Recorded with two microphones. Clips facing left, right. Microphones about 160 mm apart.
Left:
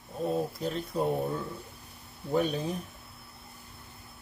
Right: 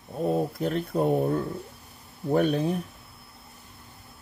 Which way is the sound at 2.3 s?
60° right (ahead or behind).